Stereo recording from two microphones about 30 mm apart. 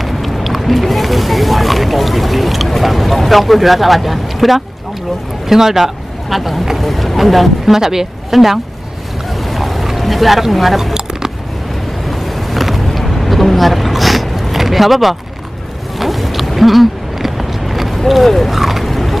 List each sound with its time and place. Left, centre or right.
0.0 s speech: centre
6.8 s speech: centre
7.7 s speech: centre
9.5 s boat: centre
9.9 s speech: centre
10.8 s squish: centre
12.1 s vehicle: centre
16.0 s a sound: centre